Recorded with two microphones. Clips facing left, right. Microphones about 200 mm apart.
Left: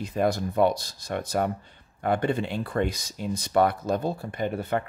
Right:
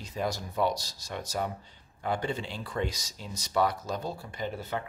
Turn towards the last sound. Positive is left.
turn(degrees=60)  # may be behind; listen again after turning